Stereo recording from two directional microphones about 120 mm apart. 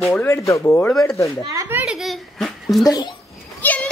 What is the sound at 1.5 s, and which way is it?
Children playing, 25° right (ahead or behind).